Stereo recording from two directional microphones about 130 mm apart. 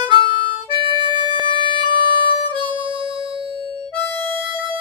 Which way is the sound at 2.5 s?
40° right (ahead or behind).